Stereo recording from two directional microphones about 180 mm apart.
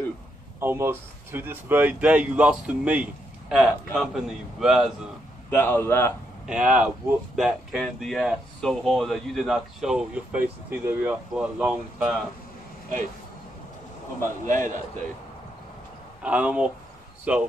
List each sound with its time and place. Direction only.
0.6 s speech: 15° right (ahead or behind)
5.5 s a man's voice: 10° left (ahead or behind)
6.4 s speech: 5° right (ahead or behind)
14.4 s a man's voice: 45° right (ahead or behind)
16.2 s speech: 5° right (ahead or behind)